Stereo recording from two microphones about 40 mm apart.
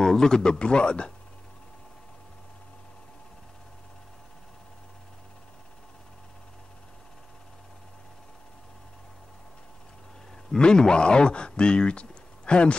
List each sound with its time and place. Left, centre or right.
0.0 s speech: centre
10.5 s speech: centre